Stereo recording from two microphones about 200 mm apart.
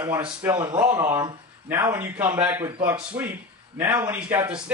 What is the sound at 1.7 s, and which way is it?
A man's voice, 10° right (ahead or behind).